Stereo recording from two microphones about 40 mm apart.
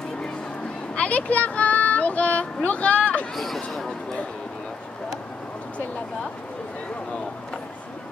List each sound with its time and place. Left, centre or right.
0.9 s speech: left
3.3 s speech: centre